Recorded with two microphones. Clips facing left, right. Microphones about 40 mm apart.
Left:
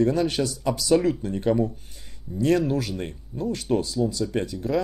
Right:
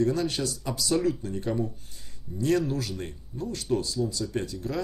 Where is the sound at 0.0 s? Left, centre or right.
Left.